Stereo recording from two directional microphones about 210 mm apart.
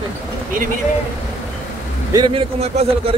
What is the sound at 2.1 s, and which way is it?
Speech, 20° right (ahead or behind).